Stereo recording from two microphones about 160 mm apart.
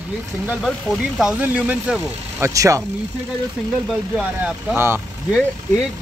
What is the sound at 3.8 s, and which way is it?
Speech, 5° right (ahead or behind).